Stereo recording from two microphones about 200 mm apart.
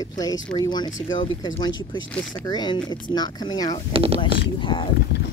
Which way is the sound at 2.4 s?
20° left (ahead or behind).